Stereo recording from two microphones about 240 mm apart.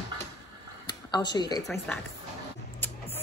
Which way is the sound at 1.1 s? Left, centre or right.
Centre.